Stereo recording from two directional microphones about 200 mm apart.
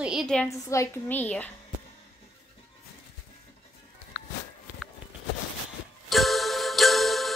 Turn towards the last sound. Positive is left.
turn(degrees=0)  # may be behind; listen again after turning